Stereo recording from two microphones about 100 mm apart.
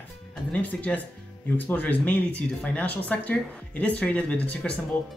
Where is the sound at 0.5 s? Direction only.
15° left (ahead or behind).